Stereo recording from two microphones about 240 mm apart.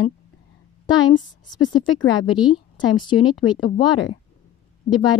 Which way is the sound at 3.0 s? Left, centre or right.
Centre.